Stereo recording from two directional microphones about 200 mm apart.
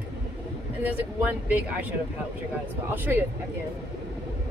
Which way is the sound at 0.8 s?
10° right (ahead or behind).